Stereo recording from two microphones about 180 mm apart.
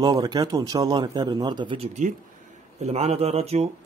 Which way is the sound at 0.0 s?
20° right (ahead or behind).